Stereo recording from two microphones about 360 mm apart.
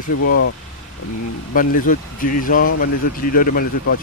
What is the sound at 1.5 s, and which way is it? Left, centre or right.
Speech, left.